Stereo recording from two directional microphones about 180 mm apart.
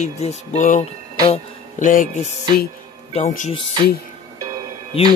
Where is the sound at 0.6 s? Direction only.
45° left (ahead or behind).